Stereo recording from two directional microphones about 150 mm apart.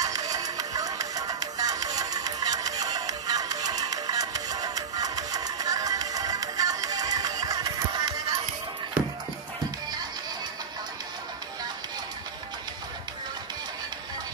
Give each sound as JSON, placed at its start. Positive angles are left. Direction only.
{"t": 0.0, "sound": "music", "side_deg": -25}